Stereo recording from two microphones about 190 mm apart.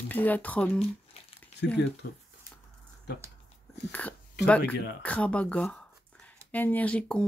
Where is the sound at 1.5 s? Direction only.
35° left (ahead or behind).